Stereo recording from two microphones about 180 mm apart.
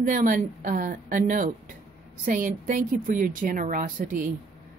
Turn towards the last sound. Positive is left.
turn(degrees=-50)  # may be behind; listen again after turning